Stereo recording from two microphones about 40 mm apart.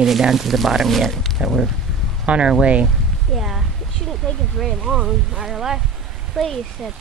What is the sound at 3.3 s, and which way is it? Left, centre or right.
Speech, centre.